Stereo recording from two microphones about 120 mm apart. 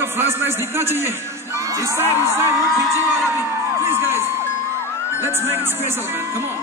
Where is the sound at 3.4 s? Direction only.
20° right (ahead or behind).